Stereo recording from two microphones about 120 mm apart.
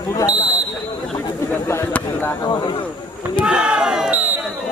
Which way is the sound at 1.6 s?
20° left (ahead or behind).